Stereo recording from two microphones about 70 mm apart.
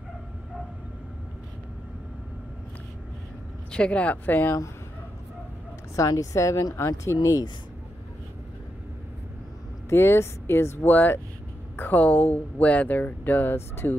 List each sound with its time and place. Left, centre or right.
3.7 s speech: centre
5.9 s speech: left
7.2 s speech: left
9.8 s speech: left